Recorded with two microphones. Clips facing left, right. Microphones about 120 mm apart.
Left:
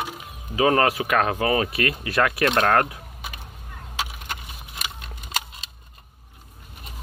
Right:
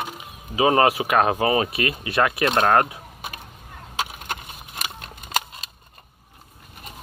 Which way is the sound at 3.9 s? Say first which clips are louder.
Right 2 dB; 45° right (ahead or behind).